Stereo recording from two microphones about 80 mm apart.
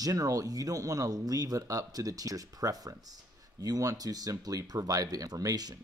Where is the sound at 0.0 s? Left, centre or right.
Right.